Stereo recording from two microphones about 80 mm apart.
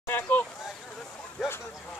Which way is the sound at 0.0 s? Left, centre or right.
Left.